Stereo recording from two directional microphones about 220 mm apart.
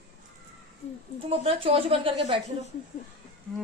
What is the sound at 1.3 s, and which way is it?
A woman's voice, 25° right (ahead or behind).